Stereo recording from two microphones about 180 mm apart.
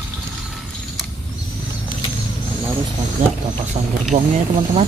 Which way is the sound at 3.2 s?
45° right (ahead or behind).